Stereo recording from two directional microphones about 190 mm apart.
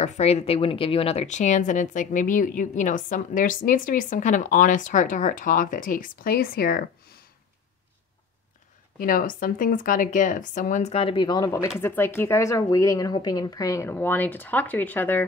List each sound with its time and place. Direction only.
0.0 s speech: 35° left (ahead or behind); by 6.9 s 50° left (ahead or behind)
9.0 s speech: 45° left (ahead or behind); by 15.2 s 10° left (ahead or behind)